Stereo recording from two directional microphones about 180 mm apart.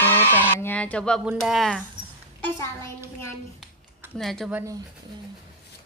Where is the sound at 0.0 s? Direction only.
10° left (ahead or behind).